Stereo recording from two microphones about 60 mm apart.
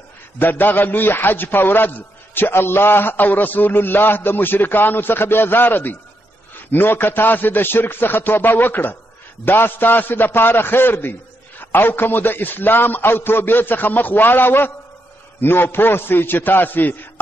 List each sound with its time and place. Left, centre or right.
0.4 s a man's voice: left